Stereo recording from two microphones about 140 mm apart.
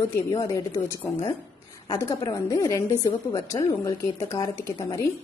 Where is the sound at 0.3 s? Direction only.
25° left (ahead or behind).